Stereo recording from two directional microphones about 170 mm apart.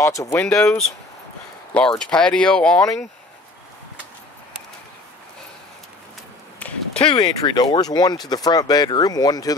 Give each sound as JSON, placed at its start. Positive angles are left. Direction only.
{"t": 0.0, "sound": "speech", "side_deg": 20}
{"t": 0.4, "sound": "speech", "side_deg": 5}
{"t": 6.6, "sound": "a sound", "side_deg": 10}
{"t": 7.1, "sound": "speech", "side_deg": 25}